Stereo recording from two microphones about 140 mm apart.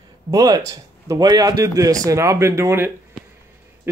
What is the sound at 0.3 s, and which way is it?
Speech, 25° right (ahead or behind).